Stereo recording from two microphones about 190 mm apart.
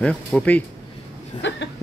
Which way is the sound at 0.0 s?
5° left (ahead or behind).